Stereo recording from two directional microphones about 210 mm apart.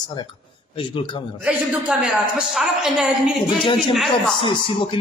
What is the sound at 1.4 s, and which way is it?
A woman's voice, centre (ahead or behind).